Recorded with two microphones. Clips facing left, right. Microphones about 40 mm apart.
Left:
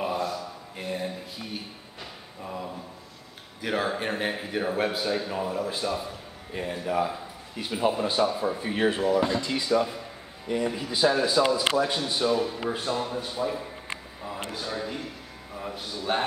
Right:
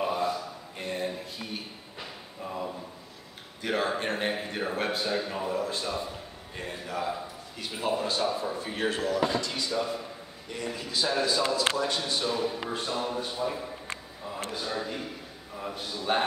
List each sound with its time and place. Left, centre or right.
0.7 s music: centre
2.4 s a sound: centre
3.6 s a man's voice: centre